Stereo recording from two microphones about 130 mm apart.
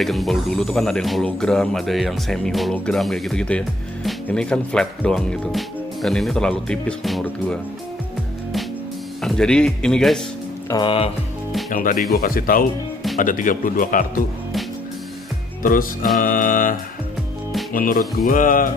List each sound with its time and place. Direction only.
0.0 s speech: centre (ahead or behind)
9.2 s speech: 5° left (ahead or behind)
10.7 s speech: 40° left (ahead or behind)
11.7 s speech: 90° left
15.6 s speech: 90° left
16.2 s music: 90° left
17.7 s speech: 90° left